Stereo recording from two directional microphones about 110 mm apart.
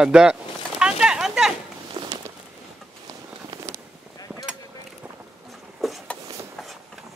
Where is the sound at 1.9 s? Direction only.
40° right (ahead or behind).